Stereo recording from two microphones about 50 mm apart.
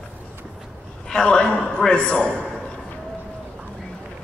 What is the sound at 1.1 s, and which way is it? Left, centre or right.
A woman's voice, centre.